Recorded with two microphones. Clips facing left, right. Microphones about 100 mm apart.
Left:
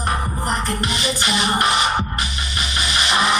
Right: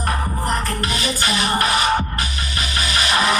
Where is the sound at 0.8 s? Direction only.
45° right (ahead or behind).